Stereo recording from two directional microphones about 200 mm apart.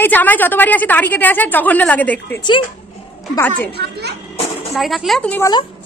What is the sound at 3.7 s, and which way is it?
Speech, 55° right (ahead or behind).